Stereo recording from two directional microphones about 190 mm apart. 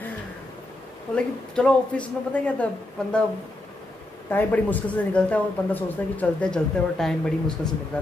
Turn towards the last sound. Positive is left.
turn(degrees=5)  # may be behind; listen again after turning